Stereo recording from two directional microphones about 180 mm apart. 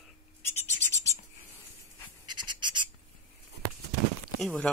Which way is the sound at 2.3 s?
25° right (ahead or behind).